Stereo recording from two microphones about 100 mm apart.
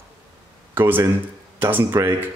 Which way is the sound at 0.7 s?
20° right (ahead or behind).